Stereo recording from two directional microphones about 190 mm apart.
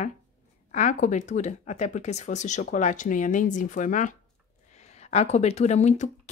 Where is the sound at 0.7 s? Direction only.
40° left (ahead or behind).